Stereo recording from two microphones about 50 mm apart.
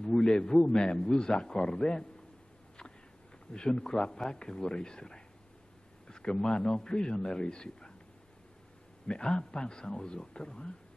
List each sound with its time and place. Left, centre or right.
0.0 s a man's voice: centre
3.5 s a man's voice: centre
9.0 s a man's voice: centre